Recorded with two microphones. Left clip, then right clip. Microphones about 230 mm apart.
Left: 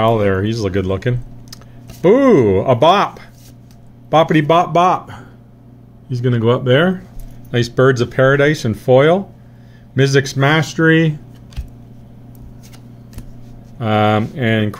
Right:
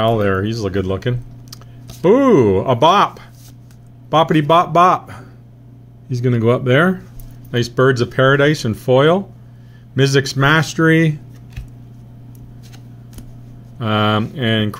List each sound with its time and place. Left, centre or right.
0.0 s speech: centre
7.5 s speech: centre
13.7 s speech: centre